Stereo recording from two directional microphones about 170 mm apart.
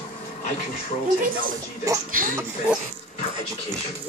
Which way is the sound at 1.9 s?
20° right (ahead or behind).